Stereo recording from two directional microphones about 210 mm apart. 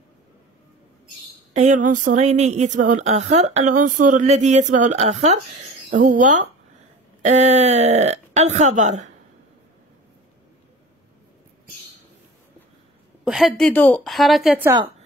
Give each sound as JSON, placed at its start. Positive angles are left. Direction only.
{"t": 1.5, "sound": "a woman's voice", "side_deg": -35}
{"t": 13.2, "sound": "a woman's voice", "side_deg": 0}